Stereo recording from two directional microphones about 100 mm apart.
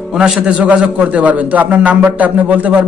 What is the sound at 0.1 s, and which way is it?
A man's voice, 10° right (ahead or behind).